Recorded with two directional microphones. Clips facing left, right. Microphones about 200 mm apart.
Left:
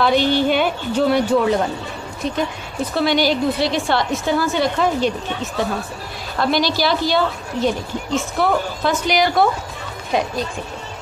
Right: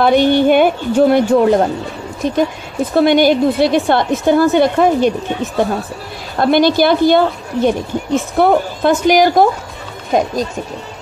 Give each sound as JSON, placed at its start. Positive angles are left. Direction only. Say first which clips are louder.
{"t": 0.0, "sound": "a woman's voice", "louder": "right 6 dB", "side_deg": -50}
{"t": 2.9, "sound": "a woman's voice", "louder": "right 7 dB", "side_deg": -50}
{"t": 6.3, "sound": "a woman's voice", "louder": "right 7 dB", "side_deg": -50}